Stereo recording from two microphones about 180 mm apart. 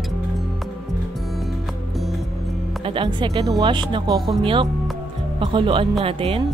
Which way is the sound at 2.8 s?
30° right (ahead or behind).